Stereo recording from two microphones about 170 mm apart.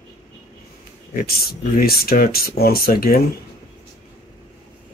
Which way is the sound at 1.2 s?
65° left (ahead or behind).